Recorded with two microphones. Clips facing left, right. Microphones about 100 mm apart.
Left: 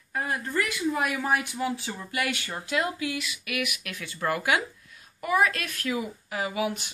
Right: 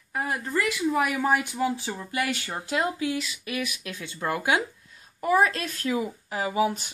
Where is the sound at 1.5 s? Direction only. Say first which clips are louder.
Right 3 dB; 25° right (ahead or behind).